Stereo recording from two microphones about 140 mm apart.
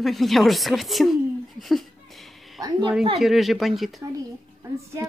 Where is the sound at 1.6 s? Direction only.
Centre (ahead or behind).